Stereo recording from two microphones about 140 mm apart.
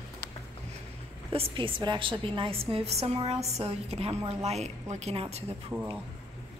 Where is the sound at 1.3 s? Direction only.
35° right (ahead or behind).